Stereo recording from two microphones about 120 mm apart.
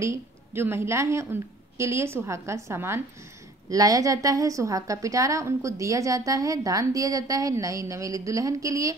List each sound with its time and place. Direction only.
0.0 s a woman's voice: 20° right (ahead or behind)